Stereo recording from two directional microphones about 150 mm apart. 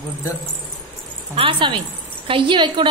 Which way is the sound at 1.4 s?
35° right (ahead or behind).